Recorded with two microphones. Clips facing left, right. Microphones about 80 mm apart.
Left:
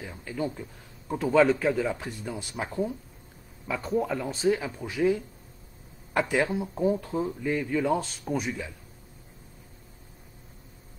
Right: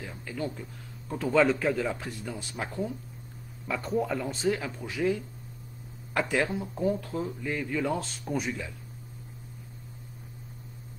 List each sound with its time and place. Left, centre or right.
0.0 s speech: centre
1.3 s a man's voice: centre
2.0 s a man's voice: centre
3.6 s a man's voice: centre
6.1 s a man's voice: centre
7.4 s a man's voice: centre